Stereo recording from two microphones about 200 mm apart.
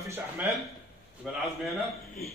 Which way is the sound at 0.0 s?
10° right (ahead or behind).